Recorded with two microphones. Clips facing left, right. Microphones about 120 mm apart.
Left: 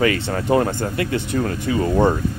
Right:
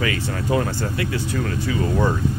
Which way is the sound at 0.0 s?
45° left (ahead or behind).